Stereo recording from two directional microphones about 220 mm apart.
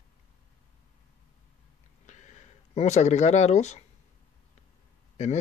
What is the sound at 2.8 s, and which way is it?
Speech, 30° left (ahead or behind).